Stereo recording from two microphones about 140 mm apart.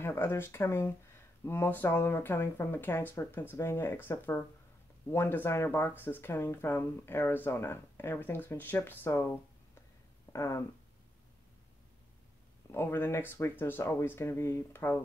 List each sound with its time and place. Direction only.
0.0 s speech: 15° left (ahead or behind)
10.3 s a sound: 20° left (ahead or behind)
12.7 s speech: 15° left (ahead or behind)